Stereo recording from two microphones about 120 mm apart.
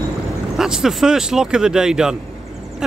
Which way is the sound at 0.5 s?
5° right (ahead or behind).